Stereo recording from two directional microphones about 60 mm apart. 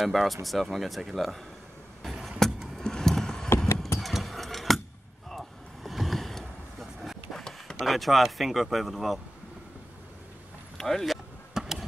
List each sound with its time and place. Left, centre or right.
0.0 s speech: centre
2.2 s vehicle: centre
3.4 s clip-clop: left
4.0 s a sound: centre
5.9 s vehicle: centre
7.8 s speech: centre
10.8 s speech: centre
11.5 s a sound: centre